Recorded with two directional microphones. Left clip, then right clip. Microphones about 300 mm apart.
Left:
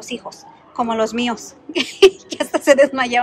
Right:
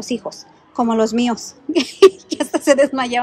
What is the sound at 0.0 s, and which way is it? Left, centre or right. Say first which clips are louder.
A woman's voice: right 4 dB; right.